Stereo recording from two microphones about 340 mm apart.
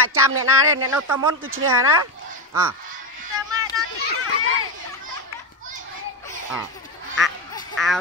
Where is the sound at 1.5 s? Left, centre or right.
Right.